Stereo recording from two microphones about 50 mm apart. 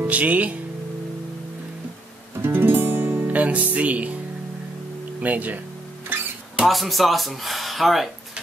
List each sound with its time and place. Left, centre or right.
0.0 s speech: right
2.4 s music: right
3.3 s speech: right
5.2 s speech: right
6.6 s speech: centre